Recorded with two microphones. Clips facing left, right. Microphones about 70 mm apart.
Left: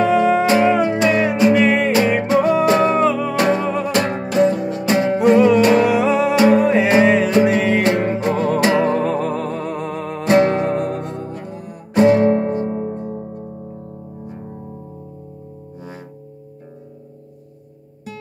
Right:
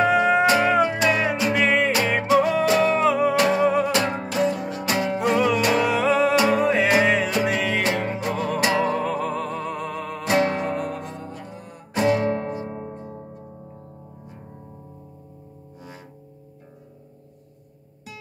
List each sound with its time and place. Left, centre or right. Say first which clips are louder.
0.0 s music: left 4 dB; centre
0.5 s music: left 4 dB; left
3.1 s music: even; centre
3.3 s music: left 1 dB; left
6.0 s music: left 3 dB; centre
6.3 s music: left 6 dB; left
11.5 s music: left 7 dB; centre
11.9 s music: left 8 dB; left